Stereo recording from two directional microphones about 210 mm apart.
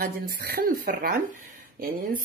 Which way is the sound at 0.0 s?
45° right (ahead or behind).